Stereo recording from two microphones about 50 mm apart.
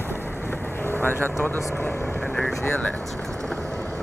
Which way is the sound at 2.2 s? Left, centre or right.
Left.